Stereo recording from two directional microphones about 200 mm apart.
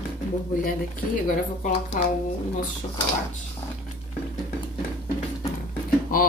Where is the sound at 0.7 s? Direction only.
45° left (ahead or behind).